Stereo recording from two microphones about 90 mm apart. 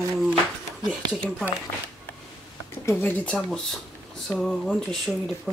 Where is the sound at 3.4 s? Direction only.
Centre (ahead or behind).